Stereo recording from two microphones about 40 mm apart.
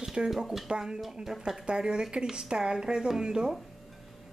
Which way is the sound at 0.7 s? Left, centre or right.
Centre.